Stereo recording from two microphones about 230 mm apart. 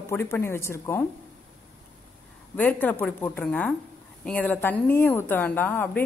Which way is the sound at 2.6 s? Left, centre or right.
Centre.